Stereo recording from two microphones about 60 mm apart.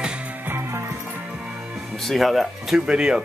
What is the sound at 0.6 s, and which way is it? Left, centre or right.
Music, right.